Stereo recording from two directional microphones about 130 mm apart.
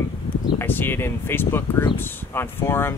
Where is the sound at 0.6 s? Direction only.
15° left (ahead or behind).